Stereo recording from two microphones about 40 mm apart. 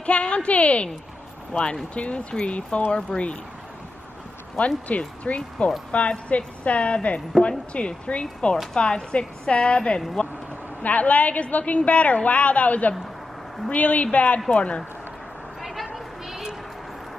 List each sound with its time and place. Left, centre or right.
0.0 s a woman's voice: left
4.6 s a woman's voice: left
10.8 s a woman's voice: left
15.6 s a sound: centre